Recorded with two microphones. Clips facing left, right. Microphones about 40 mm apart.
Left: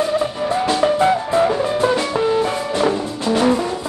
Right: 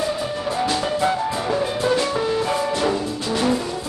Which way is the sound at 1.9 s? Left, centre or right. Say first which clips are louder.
Even; centre.